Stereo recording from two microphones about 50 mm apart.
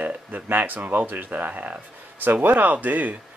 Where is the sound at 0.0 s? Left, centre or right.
Right.